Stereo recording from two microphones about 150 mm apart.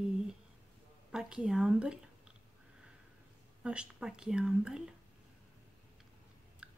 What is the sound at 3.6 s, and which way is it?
Speech, 5° right (ahead or behind).